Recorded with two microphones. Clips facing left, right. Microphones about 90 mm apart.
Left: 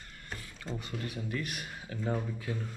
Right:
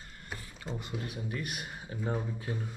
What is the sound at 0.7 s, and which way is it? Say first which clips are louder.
Speech: even; 10° right (ahead or behind).